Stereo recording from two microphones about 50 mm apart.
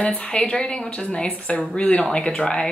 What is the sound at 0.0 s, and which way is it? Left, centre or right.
A woman's voice, left.